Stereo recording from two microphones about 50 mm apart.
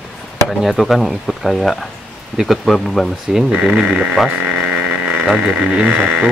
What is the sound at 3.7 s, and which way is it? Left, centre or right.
Speech, right.